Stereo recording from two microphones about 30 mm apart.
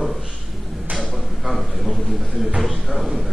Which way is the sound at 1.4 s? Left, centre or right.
Centre.